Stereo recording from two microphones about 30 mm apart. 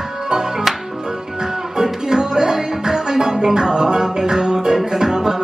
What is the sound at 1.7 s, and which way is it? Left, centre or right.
Music, centre.